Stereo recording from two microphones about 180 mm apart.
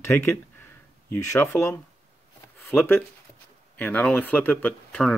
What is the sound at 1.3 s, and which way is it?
Speech, 15° left (ahead or behind).